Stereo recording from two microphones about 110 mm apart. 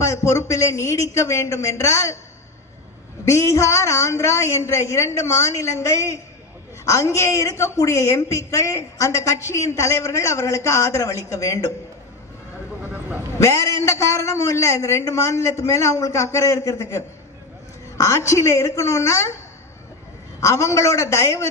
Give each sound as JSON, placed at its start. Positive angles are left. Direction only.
{"t": 0.0, "sound": "a woman's voice", "side_deg": 25}
{"t": 3.3, "sound": "a woman's voice", "side_deg": 25}
{"t": 13.4, "sound": "a woman's voice", "side_deg": 30}
{"t": 20.3, "sound": "a woman's voice", "side_deg": 25}